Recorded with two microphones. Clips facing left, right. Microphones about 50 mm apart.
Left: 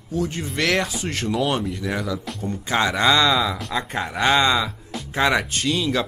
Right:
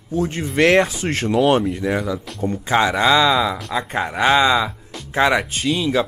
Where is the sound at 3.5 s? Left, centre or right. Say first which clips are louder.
Right 3 dB; centre.